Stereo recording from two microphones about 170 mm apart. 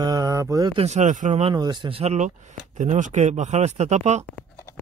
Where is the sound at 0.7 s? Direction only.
40° right (ahead or behind).